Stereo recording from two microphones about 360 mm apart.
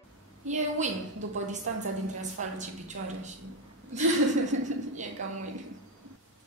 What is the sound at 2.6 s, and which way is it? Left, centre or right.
Speech, centre.